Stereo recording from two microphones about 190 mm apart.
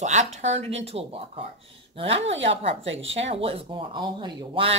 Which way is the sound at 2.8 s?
80° right.